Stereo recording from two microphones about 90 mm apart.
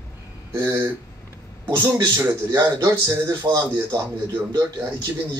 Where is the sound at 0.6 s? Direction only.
25° right (ahead or behind).